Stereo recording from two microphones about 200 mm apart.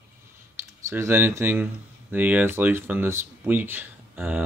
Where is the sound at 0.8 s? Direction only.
15° right (ahead or behind).